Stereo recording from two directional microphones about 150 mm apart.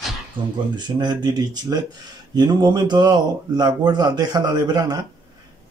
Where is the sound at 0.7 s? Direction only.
30° right (ahead or behind).